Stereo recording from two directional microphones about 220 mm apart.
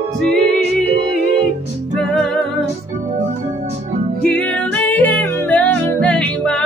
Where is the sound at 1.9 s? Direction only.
Centre (ahead or behind).